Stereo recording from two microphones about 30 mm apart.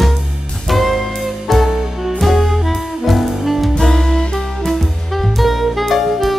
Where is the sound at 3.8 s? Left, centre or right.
Centre.